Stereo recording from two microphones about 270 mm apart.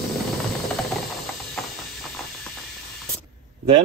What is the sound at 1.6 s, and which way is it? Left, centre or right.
Steam, centre.